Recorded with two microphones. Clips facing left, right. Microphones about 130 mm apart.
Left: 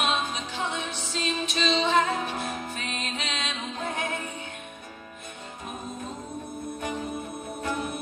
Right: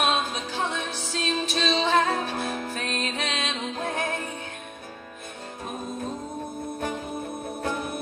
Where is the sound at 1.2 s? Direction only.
50° right (ahead or behind).